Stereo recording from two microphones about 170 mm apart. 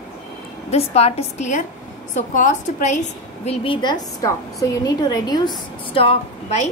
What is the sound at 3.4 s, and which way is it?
A woman's voice, 30° left (ahead or behind).